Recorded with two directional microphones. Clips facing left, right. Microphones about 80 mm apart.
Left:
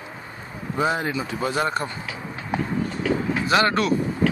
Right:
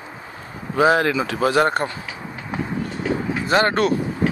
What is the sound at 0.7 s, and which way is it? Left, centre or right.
Speech, right.